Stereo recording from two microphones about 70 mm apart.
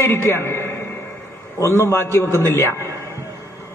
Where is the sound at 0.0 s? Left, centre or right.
Left.